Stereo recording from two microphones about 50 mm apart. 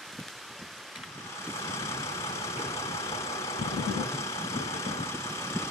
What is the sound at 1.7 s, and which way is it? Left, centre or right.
Vehicle, left.